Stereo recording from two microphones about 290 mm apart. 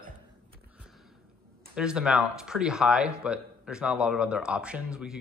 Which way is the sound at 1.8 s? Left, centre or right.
Centre.